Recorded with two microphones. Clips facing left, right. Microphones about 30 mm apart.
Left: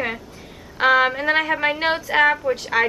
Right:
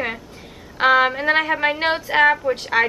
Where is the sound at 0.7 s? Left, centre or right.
Centre.